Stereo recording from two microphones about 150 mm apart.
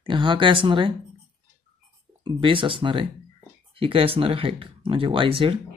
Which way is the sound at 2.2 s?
35° right (ahead or behind).